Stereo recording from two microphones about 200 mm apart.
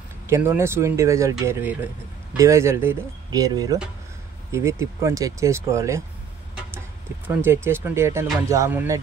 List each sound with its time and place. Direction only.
0.3 s speech: 15° right (ahead or behind)
7.2 s speech: 10° right (ahead or behind)